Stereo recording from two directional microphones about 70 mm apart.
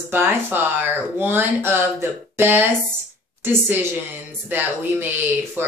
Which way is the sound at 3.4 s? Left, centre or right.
Right.